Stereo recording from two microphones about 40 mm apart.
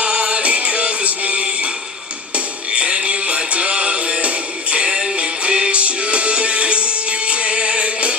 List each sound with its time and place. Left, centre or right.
0.0 s music: right
4.8 s music: centre